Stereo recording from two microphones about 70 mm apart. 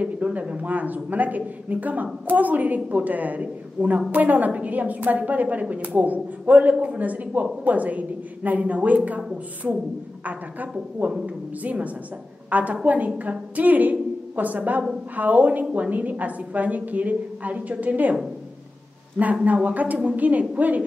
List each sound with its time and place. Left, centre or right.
0.0 s a woman's voice: right
11.2 s a woman's voice: right
19.4 s a woman's voice: right